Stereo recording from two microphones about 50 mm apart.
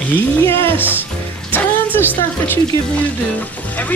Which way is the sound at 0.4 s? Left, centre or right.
Left.